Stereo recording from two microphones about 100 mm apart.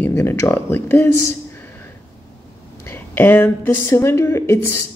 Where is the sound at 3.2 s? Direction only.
20° left (ahead or behind).